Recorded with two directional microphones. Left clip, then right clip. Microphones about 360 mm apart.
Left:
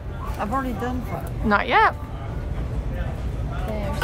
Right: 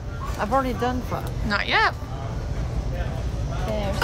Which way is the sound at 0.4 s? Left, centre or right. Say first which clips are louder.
Right 3 dB; centre.